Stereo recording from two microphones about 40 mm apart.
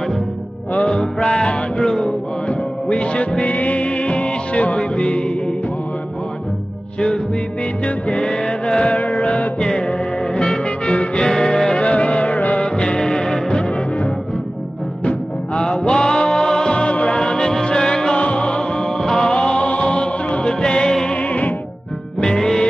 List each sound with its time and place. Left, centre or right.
0.7 s music: left
2.0 s music: left
7.8 s music: left
9.6 s music: left
11.8 s music: left
12.6 s music: left
15.0 s music: left
21.1 s music: left
22.2 s music: centre